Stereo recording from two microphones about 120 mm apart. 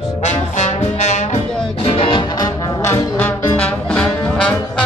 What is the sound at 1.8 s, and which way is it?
Music, 45° left (ahead or behind).